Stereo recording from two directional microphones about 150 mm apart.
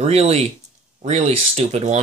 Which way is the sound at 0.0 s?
45° right (ahead or behind).